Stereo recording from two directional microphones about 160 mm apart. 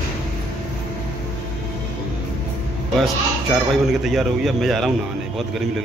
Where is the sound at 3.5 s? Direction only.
Centre (ahead or behind).